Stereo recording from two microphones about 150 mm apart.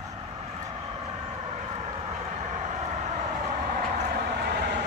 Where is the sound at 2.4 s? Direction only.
55° right (ahead or behind).